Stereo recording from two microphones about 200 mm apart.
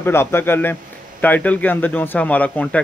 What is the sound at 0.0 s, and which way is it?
Speech, 10° left (ahead or behind).